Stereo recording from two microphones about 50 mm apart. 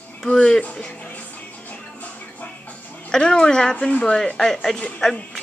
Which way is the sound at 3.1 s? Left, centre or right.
Centre.